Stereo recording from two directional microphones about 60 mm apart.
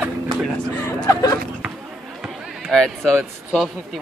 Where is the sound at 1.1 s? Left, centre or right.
Left.